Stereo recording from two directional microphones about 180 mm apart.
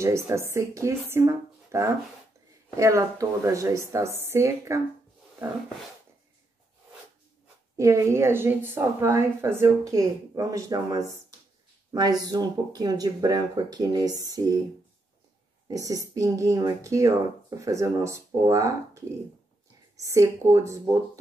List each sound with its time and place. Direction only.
0.3 s a woman's voice: 15° right (ahead or behind)
7.7 s a woman's voice: 15° right (ahead or behind)
15.7 s a woman's voice: 20° right (ahead or behind)